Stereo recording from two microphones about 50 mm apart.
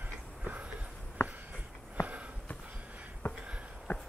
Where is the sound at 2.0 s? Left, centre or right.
Right.